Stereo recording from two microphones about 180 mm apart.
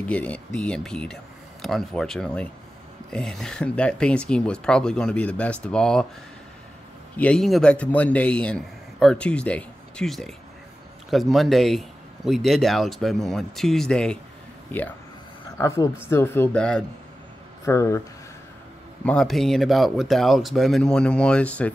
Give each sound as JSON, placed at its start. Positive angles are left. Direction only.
{"t": 0.0, "sound": "speech", "side_deg": 5}
{"t": 7.2, "sound": "a man's voice", "side_deg": 5}
{"t": 17.6, "sound": "a man's voice", "side_deg": 15}
{"t": 19.0, "sound": "speech", "side_deg": 5}